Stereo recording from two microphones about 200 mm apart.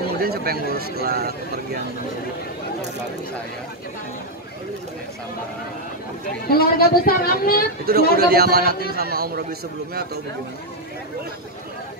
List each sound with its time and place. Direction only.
0.2 s a man's voice: 50° right (ahead or behind)
6.5 s a woman's voice: 50° left (ahead or behind)
7.9 s a man's voice: 50° right (ahead or behind)